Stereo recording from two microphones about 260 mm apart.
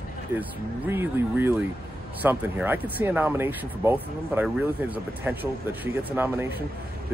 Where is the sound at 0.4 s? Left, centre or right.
Centre.